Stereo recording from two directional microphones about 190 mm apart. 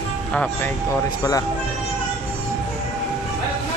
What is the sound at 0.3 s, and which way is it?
Speech, 10° left (ahead or behind).